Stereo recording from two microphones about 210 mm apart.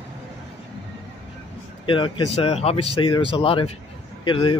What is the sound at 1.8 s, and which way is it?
Speech, 25° left (ahead or behind).